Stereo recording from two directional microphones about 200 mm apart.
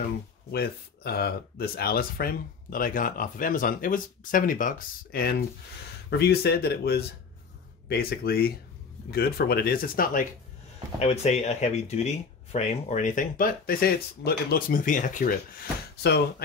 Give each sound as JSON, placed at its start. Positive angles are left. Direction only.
{"t": 0.5, "sound": "speech", "side_deg": 50}
{"t": 11.0, "sound": "speech", "side_deg": 30}